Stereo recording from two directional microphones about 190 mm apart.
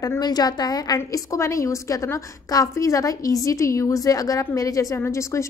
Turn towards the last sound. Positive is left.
turn(degrees=15)  # may be behind; listen again after turning